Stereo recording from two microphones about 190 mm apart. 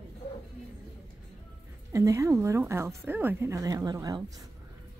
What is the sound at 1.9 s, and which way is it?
A woman's voice, 15° right (ahead or behind).